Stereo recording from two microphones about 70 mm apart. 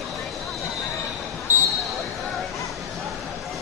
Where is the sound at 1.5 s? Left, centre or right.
Right.